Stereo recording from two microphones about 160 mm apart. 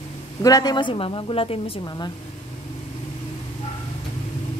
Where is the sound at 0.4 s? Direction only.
25° left (ahead or behind).